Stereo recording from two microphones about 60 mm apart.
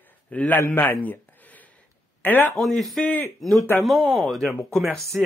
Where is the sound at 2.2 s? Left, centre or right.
Left.